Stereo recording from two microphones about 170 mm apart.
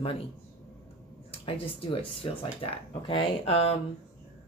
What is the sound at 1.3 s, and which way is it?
Speech, 35° left (ahead or behind).